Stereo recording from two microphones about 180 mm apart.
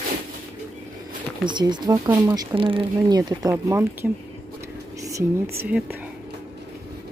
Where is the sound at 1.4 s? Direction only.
25° right (ahead or behind).